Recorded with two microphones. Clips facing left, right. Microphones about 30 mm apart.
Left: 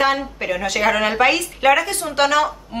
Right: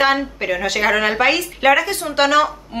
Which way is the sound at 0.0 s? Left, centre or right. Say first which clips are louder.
Right 2 dB; centre.